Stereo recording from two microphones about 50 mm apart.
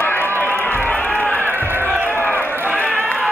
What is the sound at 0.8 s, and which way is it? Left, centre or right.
Run, left.